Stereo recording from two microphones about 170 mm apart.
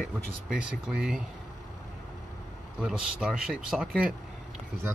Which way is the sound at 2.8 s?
Centre (ahead or behind).